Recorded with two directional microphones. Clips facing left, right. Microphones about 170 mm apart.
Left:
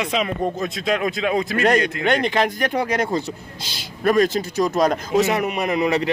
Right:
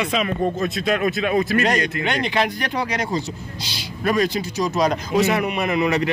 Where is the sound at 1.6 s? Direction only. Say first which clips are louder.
Left 3 dB; 55° left (ahead or behind).